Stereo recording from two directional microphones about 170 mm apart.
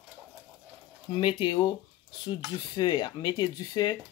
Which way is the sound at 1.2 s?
30° left (ahead or behind).